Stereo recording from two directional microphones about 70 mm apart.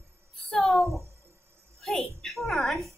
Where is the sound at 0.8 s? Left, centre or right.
Right.